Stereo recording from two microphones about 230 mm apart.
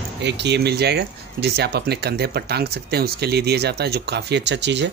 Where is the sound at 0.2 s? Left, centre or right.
Right.